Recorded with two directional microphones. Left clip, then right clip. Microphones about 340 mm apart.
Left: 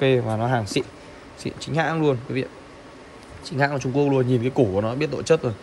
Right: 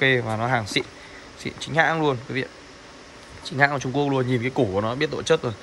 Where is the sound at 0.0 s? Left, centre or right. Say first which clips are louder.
Even; centre.